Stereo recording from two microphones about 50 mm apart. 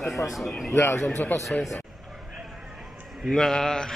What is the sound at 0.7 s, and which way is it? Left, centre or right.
Speech, left.